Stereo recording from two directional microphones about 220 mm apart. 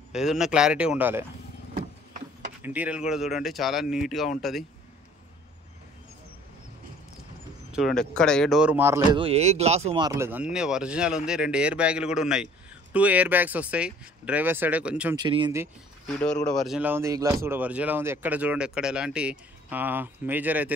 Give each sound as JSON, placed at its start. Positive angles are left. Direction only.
{"t": 0.1, "sound": "speech", "side_deg": 0}
{"t": 2.6, "sound": "speech", "side_deg": -5}
{"t": 7.7, "sound": "speech", "side_deg": 0}
{"t": 9.1, "sound": "speech", "side_deg": -25}
{"t": 15.1, "sound": "speech", "side_deg": -20}
{"t": 16.1, "sound": "speech", "side_deg": 0}